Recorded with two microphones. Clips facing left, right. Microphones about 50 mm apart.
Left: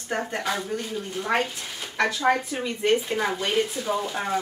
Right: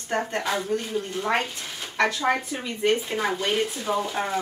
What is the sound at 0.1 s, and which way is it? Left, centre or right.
Speech, centre.